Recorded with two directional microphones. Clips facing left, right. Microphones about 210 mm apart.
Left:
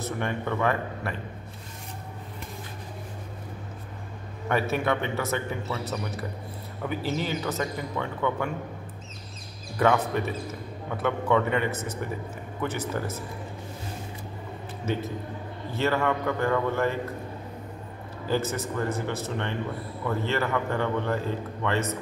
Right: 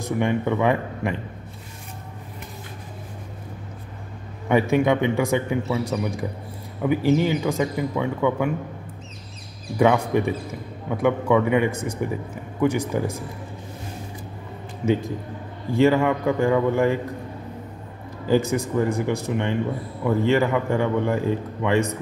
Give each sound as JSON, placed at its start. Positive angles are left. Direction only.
{"t": 0.0, "sound": "a man's voice", "side_deg": -15}
{"t": 4.5, "sound": "a man's voice", "side_deg": -15}
{"t": 9.8, "sound": "a man's voice", "side_deg": -10}
{"t": 14.9, "sound": "a man's voice", "side_deg": -15}
{"t": 18.2, "sound": "a man's voice", "side_deg": -15}